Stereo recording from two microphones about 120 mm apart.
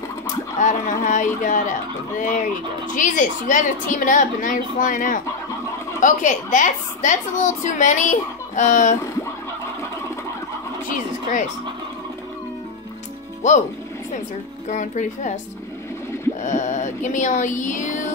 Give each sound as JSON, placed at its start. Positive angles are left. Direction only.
{"t": 0.6, "sound": "a woman's voice", "side_deg": 90}
{"t": 13.4, "sound": "a woman's voice", "side_deg": 90}
{"t": 14.7, "sound": "speech", "side_deg": 85}
{"t": 16.4, "sound": "a woman's voice", "side_deg": 90}